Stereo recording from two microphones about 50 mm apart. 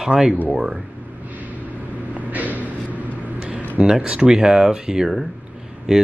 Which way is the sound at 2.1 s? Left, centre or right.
Right.